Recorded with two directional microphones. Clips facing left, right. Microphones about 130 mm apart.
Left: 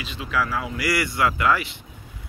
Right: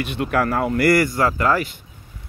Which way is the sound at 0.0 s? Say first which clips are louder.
Right 6 dB; 60° right (ahead or behind).